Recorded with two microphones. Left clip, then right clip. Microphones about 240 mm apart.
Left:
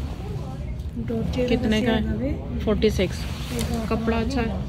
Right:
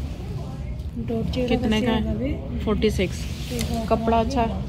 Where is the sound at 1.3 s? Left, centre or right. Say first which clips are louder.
Left 1 dB; centre.